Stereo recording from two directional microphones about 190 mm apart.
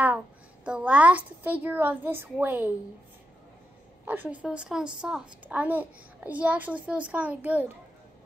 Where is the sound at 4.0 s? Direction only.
10° right (ahead or behind).